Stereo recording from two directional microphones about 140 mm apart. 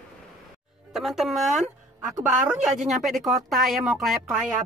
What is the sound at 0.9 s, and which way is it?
A woman's voice, centre (ahead or behind).